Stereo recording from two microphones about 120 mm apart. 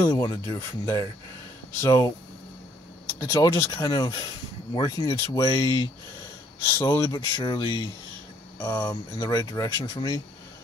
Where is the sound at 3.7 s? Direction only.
40° left (ahead or behind).